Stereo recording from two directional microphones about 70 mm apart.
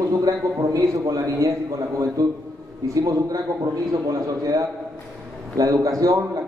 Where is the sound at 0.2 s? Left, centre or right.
Right.